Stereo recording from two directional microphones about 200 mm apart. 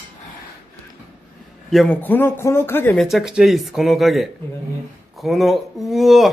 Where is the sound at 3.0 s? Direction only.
Centre (ahead or behind).